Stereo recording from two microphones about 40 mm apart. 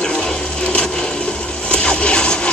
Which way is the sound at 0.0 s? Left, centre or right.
Left.